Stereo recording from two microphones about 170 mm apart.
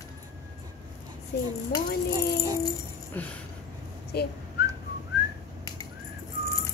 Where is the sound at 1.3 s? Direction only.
75° left (ahead or behind).